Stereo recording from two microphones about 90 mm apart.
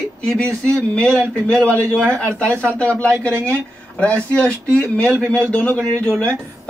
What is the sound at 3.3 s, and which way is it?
Speech, 30° right (ahead or behind).